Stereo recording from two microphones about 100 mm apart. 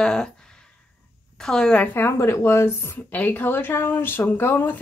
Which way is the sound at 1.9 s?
25° left (ahead or behind).